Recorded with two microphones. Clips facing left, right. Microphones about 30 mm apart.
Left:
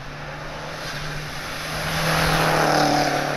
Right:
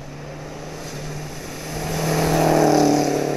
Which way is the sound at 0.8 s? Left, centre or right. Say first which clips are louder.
Left 2 dB; left.